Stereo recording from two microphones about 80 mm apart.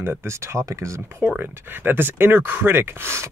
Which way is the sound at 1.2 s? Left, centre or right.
Centre.